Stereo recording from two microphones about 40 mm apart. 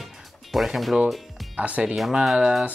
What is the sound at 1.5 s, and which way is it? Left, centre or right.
Speech, right.